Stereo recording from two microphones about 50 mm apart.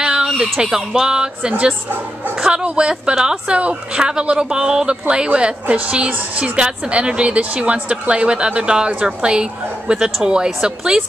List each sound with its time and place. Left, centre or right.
0.0 s chicken: centre
0.4 s a woman's voice: centre